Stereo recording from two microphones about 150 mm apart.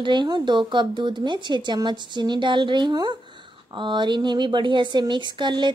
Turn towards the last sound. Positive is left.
turn(degrees=-30)  # may be behind; listen again after turning